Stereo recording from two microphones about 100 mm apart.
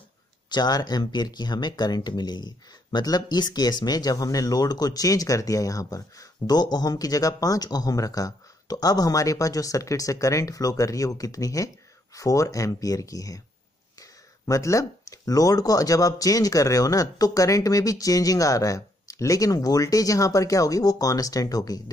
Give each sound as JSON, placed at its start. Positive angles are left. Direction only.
{"t": 0.5, "sound": "speech", "side_deg": 40}